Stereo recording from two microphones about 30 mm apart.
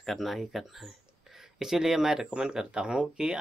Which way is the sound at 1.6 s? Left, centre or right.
Centre.